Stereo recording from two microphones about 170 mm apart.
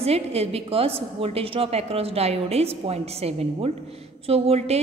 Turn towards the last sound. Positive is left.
turn(degrees=-35)  # may be behind; listen again after turning